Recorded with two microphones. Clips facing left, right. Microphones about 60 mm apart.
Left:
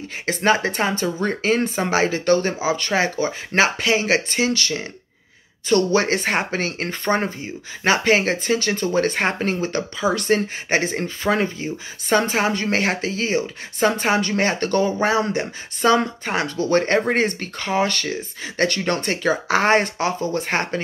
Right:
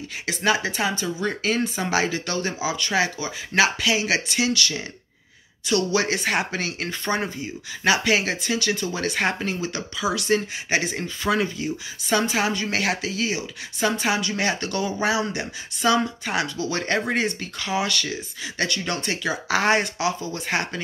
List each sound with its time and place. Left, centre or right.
0.3 s speech: left